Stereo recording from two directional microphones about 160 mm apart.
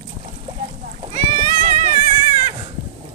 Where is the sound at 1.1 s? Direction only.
50° right (ahead or behind).